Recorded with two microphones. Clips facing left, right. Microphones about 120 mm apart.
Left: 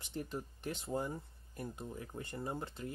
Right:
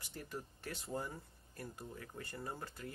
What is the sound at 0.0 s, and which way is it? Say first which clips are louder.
Speech: left 5 dB; 20° left (ahead or behind).